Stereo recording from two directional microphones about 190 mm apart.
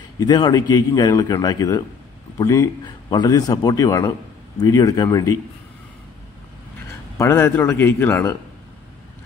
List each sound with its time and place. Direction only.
0.2 s a man's voice: 20° left (ahead or behind)
7.2 s speech: 15° left (ahead or behind)